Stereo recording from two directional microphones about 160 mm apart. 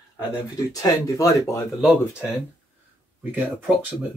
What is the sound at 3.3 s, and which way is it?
Speech, 10° right (ahead or behind).